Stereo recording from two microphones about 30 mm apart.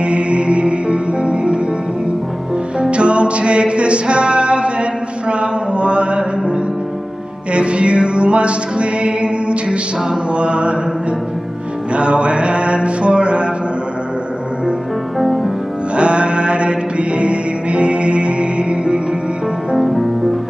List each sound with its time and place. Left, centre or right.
0.0 s music: right
2.8 s music: right
5.3 s a sound: right
7.5 s music: right
11.9 s music: right
15.1 s music: centre
16.0 s mantra: right
19.8 s music: centre